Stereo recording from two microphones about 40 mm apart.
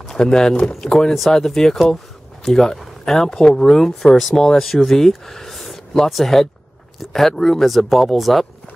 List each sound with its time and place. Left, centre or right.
0.1 s speech: centre